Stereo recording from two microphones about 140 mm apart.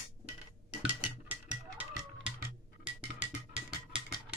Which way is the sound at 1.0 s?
10° right (ahead or behind).